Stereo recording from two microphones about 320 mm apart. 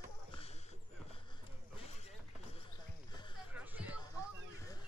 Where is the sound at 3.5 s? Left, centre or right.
Centre.